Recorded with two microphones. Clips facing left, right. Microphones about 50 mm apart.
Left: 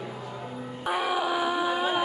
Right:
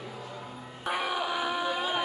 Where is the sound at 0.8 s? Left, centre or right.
Centre.